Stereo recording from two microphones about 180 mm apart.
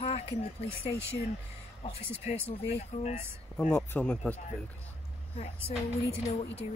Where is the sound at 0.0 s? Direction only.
35° left (ahead or behind).